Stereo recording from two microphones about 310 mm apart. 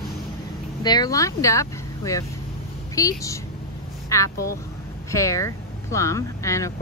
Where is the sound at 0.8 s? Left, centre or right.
Centre.